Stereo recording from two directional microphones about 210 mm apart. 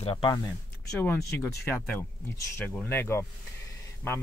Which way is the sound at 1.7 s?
10° left (ahead or behind).